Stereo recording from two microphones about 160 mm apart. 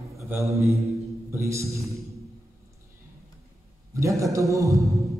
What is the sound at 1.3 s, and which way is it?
Speech, 20° right (ahead or behind).